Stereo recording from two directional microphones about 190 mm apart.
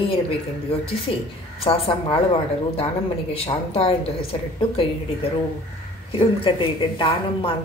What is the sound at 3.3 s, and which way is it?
A woman's voice, 30° left (ahead or behind).